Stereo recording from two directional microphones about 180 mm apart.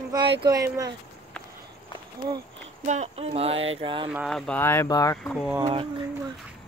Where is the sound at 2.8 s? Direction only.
40° right (ahead or behind).